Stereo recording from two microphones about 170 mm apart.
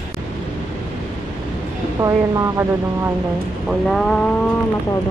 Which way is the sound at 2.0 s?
20° right (ahead or behind).